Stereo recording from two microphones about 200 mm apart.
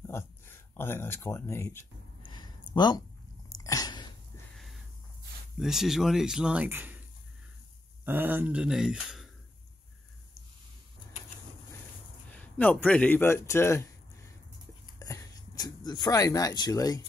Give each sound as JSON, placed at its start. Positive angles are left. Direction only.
{"t": 0.0, "sound": "speech", "side_deg": 10}
{"t": 2.2, "sound": "a sound", "side_deg": 20}
{"t": 4.6, "sound": "a sound", "side_deg": 0}
{"t": 5.6, "sound": "a man's voice", "side_deg": 0}
{"t": 8.0, "sound": "a man's voice", "side_deg": -10}
{"t": 12.3, "sound": "speech", "side_deg": 5}
{"t": 15.0, "sound": "speech", "side_deg": 15}